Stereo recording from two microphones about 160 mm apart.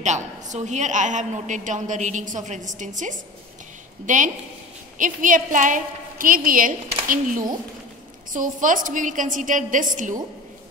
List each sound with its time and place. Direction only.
0.0 s a woman's voice: 45° right (ahead or behind)